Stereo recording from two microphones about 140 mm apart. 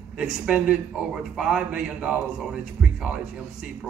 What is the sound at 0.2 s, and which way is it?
A man's voice, 10° right (ahead or behind).